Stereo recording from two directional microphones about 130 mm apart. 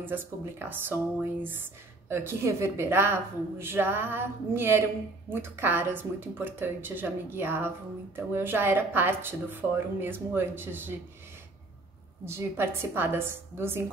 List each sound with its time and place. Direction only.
0.0 s a woman's voice: 15° right (ahead or behind)
12.3 s a woman's voice: 20° right (ahead or behind)